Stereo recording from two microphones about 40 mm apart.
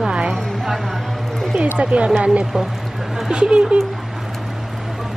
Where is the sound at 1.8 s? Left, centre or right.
Right.